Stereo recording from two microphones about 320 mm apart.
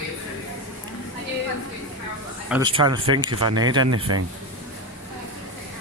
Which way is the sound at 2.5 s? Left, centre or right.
Centre.